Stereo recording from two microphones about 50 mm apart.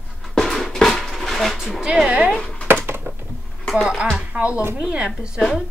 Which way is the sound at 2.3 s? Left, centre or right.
Centre.